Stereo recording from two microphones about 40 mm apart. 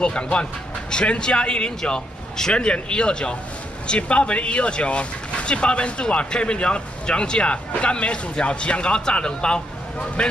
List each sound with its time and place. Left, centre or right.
0.0 s speech: left